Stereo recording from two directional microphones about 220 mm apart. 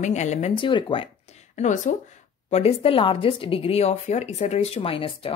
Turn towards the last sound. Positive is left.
turn(degrees=25)  # may be behind; listen again after turning